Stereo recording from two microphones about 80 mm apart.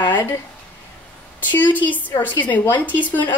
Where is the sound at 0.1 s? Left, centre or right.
Left.